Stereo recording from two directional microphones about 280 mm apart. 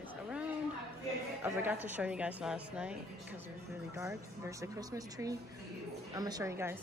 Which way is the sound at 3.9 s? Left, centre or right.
Centre.